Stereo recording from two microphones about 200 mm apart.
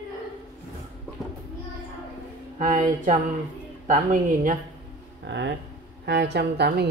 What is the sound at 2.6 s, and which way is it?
Speech, 40° right (ahead or behind).